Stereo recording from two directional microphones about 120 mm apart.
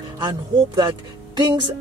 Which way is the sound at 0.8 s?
40° right (ahead or behind).